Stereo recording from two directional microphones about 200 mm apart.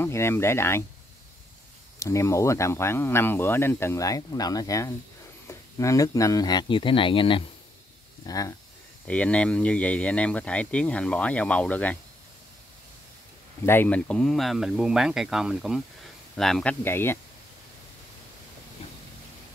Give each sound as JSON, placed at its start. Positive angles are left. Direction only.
{"t": 0.0, "sound": "speech", "side_deg": 10}
{"t": 2.0, "sound": "speech", "side_deg": 15}
{"t": 9.0, "sound": "speech", "side_deg": 5}
{"t": 13.7, "sound": "speech", "side_deg": 10}